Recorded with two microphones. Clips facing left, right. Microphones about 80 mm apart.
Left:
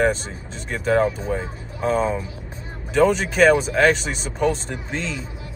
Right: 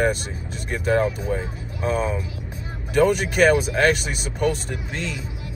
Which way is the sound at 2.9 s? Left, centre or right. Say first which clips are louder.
Left 1 dB; centre.